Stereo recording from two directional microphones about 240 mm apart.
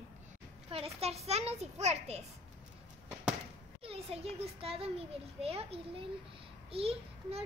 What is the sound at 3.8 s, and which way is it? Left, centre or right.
A child's voice, right.